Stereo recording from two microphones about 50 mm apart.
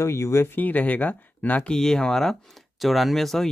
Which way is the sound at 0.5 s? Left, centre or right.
Left.